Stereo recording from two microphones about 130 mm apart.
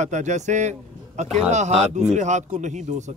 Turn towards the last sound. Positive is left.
turn(degrees=-65)  # may be behind; listen again after turning